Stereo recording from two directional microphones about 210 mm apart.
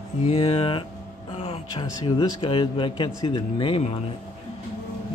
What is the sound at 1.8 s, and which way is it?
Speech, 15° left (ahead or behind).